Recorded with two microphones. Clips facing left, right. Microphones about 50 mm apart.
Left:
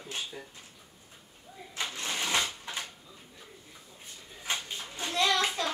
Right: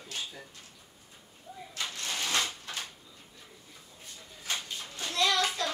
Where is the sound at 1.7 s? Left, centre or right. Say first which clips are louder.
Left 2 dB; left.